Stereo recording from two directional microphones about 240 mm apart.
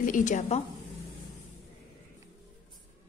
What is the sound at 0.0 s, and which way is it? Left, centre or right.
Speech, left.